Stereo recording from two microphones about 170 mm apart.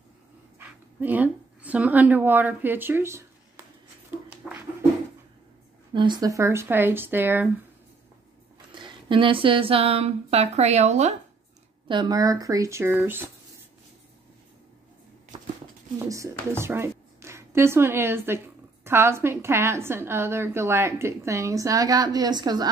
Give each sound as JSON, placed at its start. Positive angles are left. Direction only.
{"t": 0.6, "sound": "speech", "side_deg": -10}
{"t": 4.3, "sound": "dog", "side_deg": -10}
{"t": 5.9, "sound": "a woman's voice", "side_deg": -25}
{"t": 8.7, "sound": "speech", "side_deg": -30}
{"t": 11.9, "sound": "speech", "side_deg": -25}
{"t": 16.1, "sound": "a woman's voice", "side_deg": -15}